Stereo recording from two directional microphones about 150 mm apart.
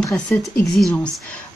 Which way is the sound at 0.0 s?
5° left (ahead or behind).